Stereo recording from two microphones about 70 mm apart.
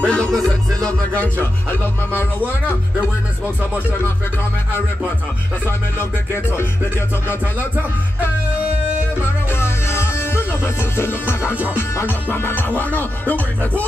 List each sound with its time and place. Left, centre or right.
0.0 s music: centre
1.4 s music: left
5.7 s music: left
9.5 s music: left